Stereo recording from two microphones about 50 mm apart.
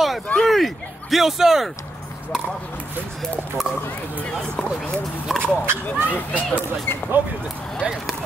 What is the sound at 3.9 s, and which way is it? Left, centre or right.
Run, left.